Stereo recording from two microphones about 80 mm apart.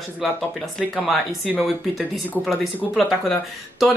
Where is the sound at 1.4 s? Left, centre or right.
Centre.